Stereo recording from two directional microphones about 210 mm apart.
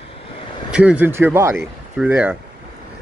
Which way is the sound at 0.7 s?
5° right (ahead or behind).